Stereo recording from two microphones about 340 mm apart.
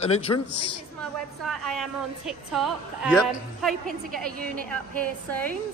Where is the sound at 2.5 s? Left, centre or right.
Centre.